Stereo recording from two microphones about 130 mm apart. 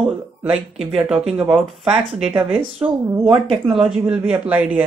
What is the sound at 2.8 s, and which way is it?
Speech, 15° right (ahead or behind).